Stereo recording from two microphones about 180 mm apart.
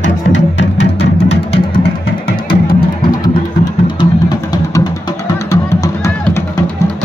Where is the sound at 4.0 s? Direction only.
20° left (ahead or behind).